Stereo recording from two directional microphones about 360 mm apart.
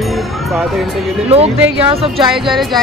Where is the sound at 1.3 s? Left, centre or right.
Centre.